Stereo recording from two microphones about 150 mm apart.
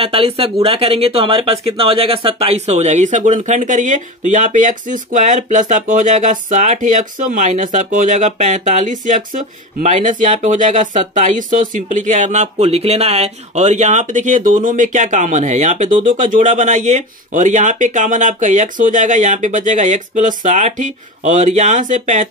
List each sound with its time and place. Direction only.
0.0 s speech: 40° right (ahead or behind)
15.9 s speech: 35° right (ahead or behind)
16.2 s speech: 55° right (ahead or behind)